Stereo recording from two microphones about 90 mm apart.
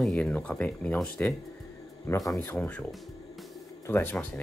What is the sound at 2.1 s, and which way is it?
Speech, 30° left (ahead or behind).